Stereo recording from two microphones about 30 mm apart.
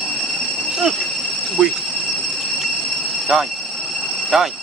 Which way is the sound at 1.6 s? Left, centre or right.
Right.